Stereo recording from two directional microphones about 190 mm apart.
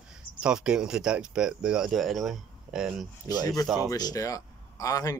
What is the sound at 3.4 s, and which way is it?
Speech, 20° left (ahead or behind).